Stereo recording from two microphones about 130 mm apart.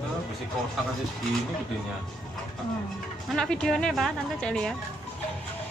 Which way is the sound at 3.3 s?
5° left (ahead or behind).